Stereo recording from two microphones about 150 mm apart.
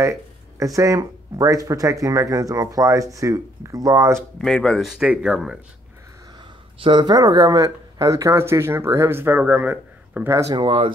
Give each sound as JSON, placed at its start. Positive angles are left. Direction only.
{"t": 0.0, "sound": "a sound", "side_deg": -20}
{"t": 0.7, "sound": "speech", "side_deg": -20}
{"t": 4.4, "sound": "speech", "side_deg": 0}
{"t": 6.8, "sound": "speech", "side_deg": -30}
{"t": 10.5, "sound": "speech", "side_deg": -35}